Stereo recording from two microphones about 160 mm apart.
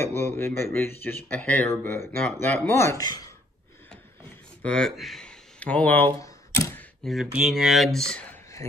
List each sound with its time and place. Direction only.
0.0 s speech: 15° left (ahead or behind)
4.6 s speech: 5° left (ahead or behind)
6.1 s typewriter: 20° left (ahead or behind)
6.8 s speech: centre (ahead or behind)